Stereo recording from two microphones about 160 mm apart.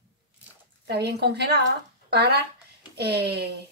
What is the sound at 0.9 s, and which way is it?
A woman's voice, 90° right.